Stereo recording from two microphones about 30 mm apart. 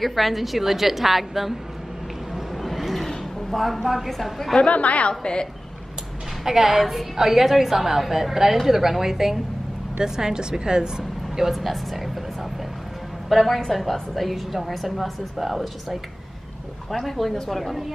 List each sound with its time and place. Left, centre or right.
0.0 s a woman's voice: centre
2.3 s a sound: centre
3.5 s a woman's voice: centre
3.8 s a woman's voice: centre
4.1 s a woman's voice: centre
4.6 s a woman's voice: left
5.2 s a woman's voice: left
6.4 s a woman's voice: centre
11.5 s a woman's voice: centre
13.3 s a woman's voice: centre
16.9 s a woman's voice: centre